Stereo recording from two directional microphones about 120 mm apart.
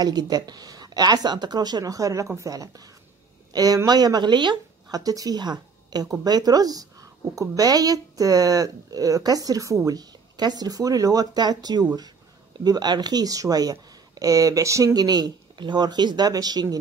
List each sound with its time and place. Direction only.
0.0 s a woman's voice: 35° right (ahead or behind)